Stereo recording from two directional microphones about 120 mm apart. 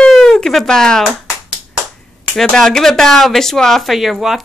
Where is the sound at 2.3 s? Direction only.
5° left (ahead or behind).